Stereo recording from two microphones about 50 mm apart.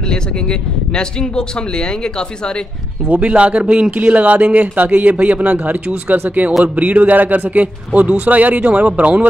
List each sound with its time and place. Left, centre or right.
0.1 s speech: centre
3.1 s a man's voice: right